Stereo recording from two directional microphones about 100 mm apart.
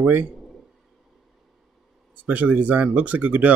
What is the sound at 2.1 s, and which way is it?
Speech, 15° right (ahead or behind).